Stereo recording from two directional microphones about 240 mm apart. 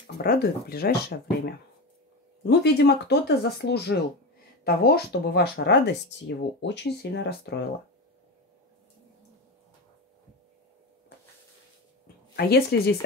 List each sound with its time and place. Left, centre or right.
0.0 s speech: left
2.4 s speech: left
12.4 s speech: left